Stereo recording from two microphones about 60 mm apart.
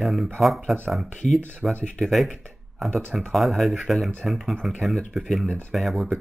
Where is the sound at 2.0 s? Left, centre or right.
Centre.